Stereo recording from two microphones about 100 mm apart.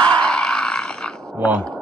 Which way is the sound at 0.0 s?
10° left (ahead or behind).